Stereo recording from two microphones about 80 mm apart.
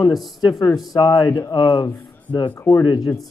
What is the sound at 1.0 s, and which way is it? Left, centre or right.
Speech, left.